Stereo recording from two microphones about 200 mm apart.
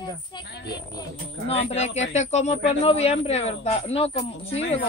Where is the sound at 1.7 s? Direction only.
35° left (ahead or behind).